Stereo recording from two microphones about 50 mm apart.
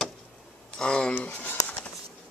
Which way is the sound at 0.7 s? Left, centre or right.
Centre.